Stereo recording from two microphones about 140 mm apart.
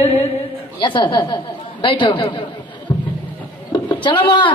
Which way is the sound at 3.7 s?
35° left (ahead or behind).